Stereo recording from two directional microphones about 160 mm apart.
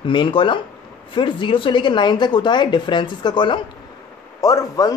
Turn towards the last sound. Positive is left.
turn(degrees=20)  # may be behind; listen again after turning